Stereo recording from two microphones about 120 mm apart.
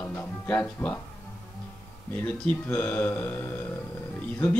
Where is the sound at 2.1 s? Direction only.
15° left (ahead or behind).